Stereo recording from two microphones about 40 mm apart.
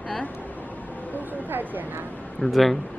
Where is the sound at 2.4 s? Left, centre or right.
Centre.